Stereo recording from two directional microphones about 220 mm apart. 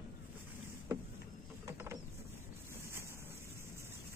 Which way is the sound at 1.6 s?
10° right (ahead or behind).